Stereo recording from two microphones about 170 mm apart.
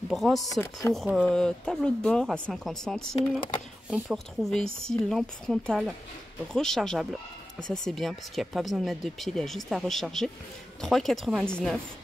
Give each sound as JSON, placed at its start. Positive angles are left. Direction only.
{"t": 0.1, "sound": "speech", "side_deg": 0}
{"t": 0.5, "sound": "speech", "side_deg": 15}
{"t": 0.9, "sound": "speech", "side_deg": 0}